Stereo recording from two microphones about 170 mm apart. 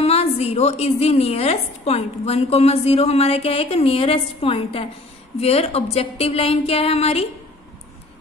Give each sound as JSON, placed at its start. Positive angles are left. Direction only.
{"t": 0.0, "sound": "a woman's voice", "side_deg": 35}